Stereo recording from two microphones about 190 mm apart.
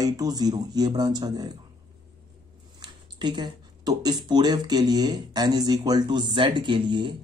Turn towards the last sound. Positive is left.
turn(degrees=-25)  # may be behind; listen again after turning